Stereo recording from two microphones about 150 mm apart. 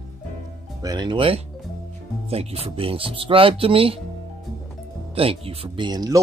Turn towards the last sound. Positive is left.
turn(degrees=-30)  # may be behind; listen again after turning